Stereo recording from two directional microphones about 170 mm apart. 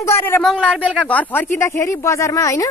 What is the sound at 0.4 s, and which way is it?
Speech, 5° left (ahead or behind).